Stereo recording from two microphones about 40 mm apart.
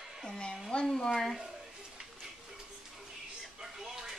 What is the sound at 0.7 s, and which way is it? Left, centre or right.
Speech, centre.